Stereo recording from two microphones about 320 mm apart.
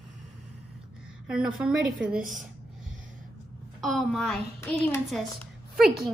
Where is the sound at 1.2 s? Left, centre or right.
Centre.